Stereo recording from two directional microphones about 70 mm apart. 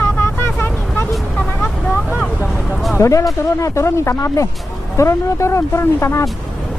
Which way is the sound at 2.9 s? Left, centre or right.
Left.